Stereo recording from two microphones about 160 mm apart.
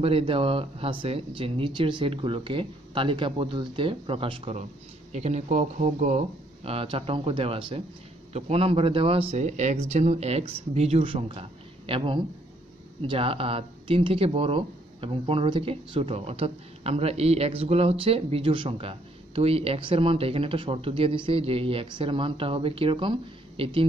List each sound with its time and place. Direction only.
0.0 s speech: 35° right (ahead or behind)
5.1 s speech: 45° right (ahead or behind)